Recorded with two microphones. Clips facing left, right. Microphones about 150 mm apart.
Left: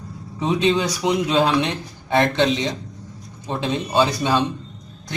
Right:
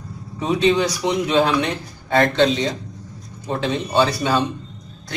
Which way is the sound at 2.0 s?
15° left (ahead or behind).